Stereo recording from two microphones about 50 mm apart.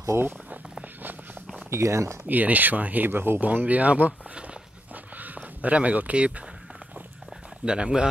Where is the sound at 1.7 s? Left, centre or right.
Right.